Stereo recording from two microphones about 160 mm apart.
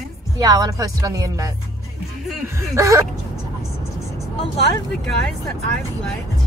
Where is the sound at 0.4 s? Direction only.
25° right (ahead or behind).